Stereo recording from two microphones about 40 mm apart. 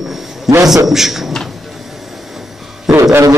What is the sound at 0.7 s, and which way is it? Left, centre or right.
Speech, centre.